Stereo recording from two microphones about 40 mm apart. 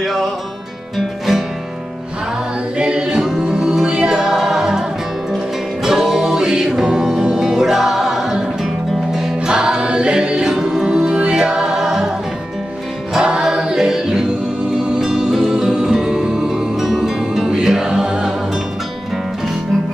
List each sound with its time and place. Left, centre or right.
0.0 s music: centre
2.8 s music: right
5.9 s music: centre
9.5 s music: right
13.4 s music: centre